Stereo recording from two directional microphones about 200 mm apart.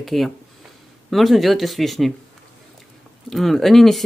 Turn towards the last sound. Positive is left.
turn(degrees=0)  # may be behind; listen again after turning